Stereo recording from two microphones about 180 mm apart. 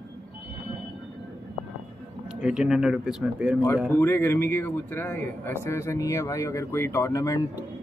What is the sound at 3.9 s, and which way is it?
A man's voice, 15° left (ahead or behind).